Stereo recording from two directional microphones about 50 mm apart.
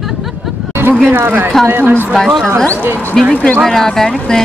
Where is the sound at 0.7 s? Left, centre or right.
Right.